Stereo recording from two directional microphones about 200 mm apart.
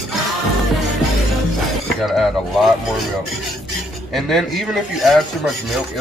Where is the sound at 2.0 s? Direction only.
Centre (ahead or behind).